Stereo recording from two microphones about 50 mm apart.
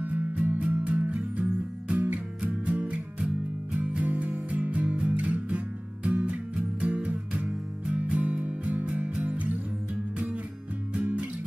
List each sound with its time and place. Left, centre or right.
0.0 s music: right
10.9 s music: right